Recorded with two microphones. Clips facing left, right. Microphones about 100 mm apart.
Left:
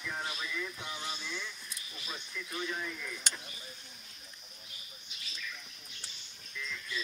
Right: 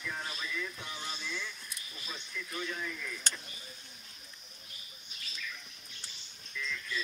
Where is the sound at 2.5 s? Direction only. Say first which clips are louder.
Left 1 dB; 25° left (ahead or behind).